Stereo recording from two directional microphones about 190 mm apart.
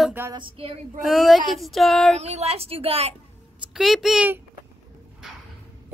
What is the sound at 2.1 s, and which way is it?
A woman's voice, 35° right (ahead or behind).